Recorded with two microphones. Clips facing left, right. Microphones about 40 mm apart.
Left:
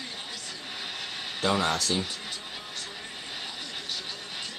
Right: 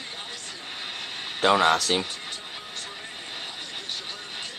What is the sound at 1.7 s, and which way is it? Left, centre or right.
Speech, right.